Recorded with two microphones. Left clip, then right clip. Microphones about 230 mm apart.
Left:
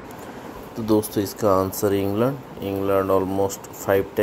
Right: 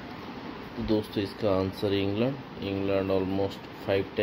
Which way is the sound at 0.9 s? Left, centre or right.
Left.